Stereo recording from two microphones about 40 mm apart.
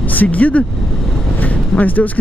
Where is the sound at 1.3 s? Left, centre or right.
Left.